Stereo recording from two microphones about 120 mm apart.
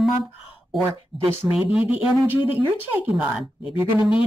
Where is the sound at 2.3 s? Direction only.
15° right (ahead or behind).